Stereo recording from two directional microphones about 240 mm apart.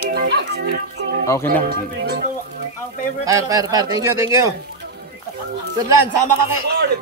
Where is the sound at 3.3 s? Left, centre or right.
Centre.